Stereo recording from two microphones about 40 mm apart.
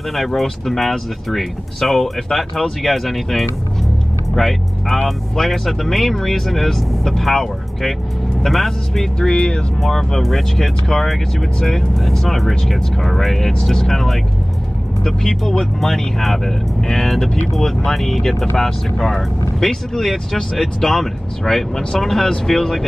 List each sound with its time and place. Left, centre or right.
0.3 s speech: centre
9.2 s speech: left
9.8 s speech: centre
13.5 s speech: centre